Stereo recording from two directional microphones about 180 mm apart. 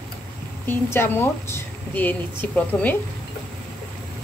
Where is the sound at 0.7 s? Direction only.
10° left (ahead or behind).